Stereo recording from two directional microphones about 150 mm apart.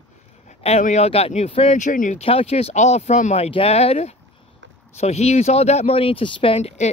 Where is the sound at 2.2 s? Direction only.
40° left (ahead or behind).